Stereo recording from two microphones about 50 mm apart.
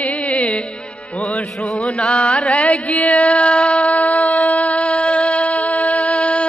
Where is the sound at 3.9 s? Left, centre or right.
Left.